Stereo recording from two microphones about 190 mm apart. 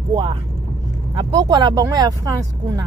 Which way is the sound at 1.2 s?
25° right (ahead or behind).